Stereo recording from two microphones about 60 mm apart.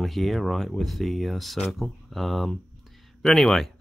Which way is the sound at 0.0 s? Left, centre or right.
Centre.